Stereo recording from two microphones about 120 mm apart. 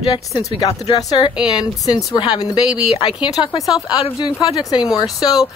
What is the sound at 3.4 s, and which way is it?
Speech, 50° left (ahead or behind).